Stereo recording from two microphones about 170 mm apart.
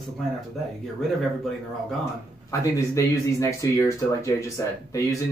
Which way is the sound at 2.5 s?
15° left (ahead or behind).